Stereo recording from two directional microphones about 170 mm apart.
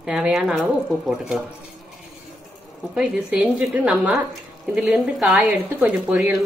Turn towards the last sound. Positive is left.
turn(degrees=-10)  # may be behind; listen again after turning